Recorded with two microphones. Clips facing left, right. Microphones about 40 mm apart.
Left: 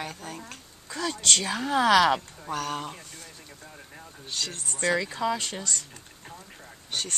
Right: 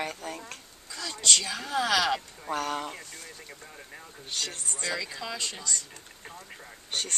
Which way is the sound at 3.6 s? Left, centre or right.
Centre.